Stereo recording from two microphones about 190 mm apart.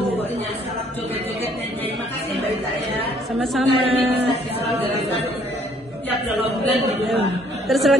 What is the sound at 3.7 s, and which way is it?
Speech, 30° right (ahead or behind).